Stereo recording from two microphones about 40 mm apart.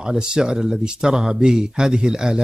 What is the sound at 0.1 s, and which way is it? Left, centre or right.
Speech, right.